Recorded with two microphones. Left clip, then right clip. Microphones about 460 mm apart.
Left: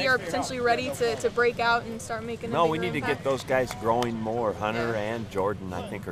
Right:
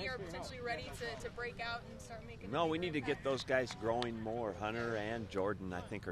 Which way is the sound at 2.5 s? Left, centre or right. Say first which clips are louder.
Left 11 dB; right.